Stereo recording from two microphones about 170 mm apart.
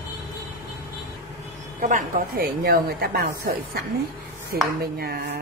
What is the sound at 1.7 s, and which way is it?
Speech, 50° right (ahead or behind).